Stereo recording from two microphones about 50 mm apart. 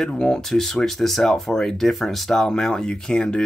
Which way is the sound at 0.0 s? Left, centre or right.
Centre.